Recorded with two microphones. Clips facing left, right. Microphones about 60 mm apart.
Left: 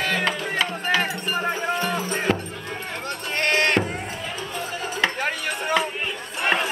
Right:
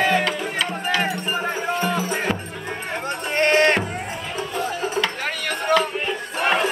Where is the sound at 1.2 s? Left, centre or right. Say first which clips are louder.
Even; centre.